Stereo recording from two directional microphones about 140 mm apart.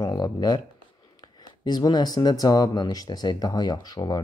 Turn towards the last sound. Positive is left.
turn(degrees=25)  # may be behind; listen again after turning